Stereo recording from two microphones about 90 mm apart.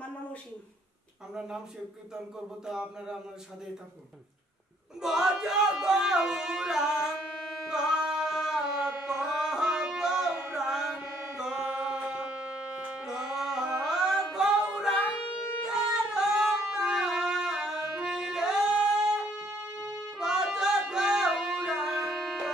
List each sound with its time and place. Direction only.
2.1 s music: 5° right (ahead or behind)
5.0 s music: 5° right (ahead or behind)
7.7 s carnatic music: 5° right (ahead or behind)
15.6 s wind instrument: 10° right (ahead or behind)
19.4 s music: 25° right (ahead or behind)
20.2 s music: 5° right (ahead or behind)